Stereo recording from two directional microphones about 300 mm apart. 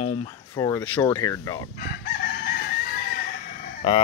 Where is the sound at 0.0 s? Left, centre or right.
Centre.